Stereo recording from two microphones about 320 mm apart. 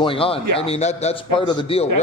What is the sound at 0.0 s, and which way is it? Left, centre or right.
A man's voice, centre.